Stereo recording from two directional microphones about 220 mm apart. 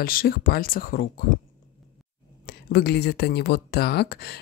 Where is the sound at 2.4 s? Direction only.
45° left (ahead or behind).